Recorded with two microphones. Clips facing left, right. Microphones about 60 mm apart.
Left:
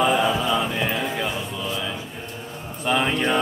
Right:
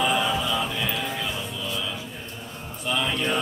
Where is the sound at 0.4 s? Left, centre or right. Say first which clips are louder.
Left 4 dB; left.